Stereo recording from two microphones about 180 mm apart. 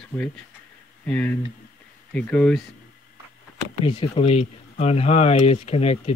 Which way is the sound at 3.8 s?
30° left (ahead or behind).